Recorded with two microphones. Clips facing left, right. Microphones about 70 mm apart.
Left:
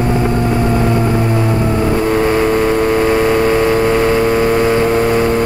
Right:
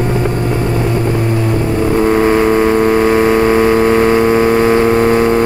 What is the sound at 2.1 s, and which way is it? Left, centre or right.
Vehicle, centre.